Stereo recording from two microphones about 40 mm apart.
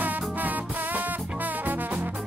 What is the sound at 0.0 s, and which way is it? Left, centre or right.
Music, right.